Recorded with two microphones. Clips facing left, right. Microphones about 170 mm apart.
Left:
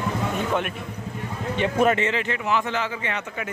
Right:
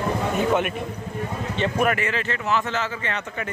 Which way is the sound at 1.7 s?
25° left (ahead or behind).